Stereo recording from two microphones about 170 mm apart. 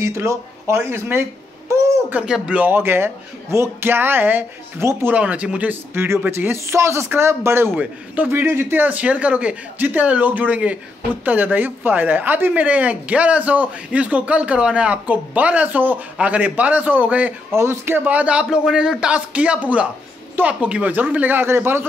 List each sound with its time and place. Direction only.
0.0 s speech: 15° right (ahead or behind)